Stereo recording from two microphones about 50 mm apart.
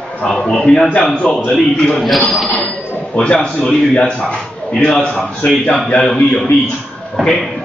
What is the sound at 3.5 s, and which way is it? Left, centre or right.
A man's voice, centre.